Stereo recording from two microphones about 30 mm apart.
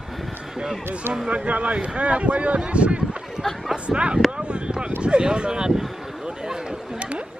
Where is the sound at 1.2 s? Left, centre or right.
Right.